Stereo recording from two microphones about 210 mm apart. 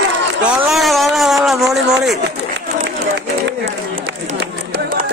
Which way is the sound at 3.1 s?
55° right (ahead or behind).